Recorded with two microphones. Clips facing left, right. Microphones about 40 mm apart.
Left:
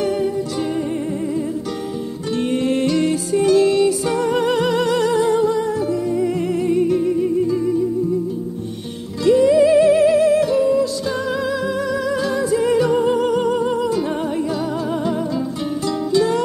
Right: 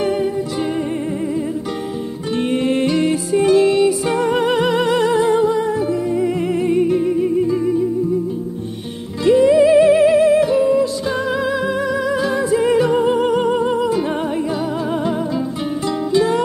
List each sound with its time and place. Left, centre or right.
0.0 s music: right
2.3 s music: right
9.2 s music: right
16.1 s music: right